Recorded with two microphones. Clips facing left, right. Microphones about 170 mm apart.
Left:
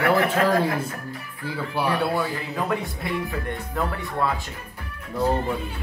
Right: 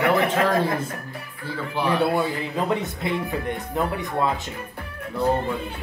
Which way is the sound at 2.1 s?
20° right (ahead or behind).